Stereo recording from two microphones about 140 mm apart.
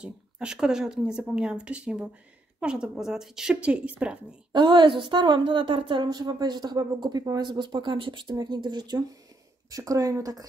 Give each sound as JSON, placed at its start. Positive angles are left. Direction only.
{"t": 0.0, "sound": "a woman's voice", "side_deg": -5}
{"t": 4.5, "sound": "a woman's voice", "side_deg": -35}